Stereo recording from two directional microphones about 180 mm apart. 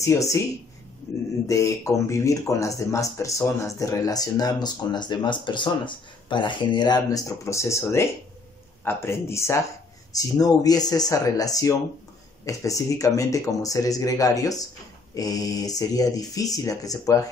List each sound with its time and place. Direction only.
0.0 s a man's voice: 15° left (ahead or behind)
1.5 s a man's voice: 15° left (ahead or behind)